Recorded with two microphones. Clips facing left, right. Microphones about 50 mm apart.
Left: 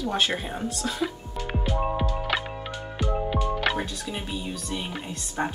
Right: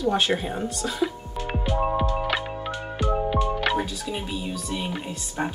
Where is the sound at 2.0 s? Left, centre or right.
Right.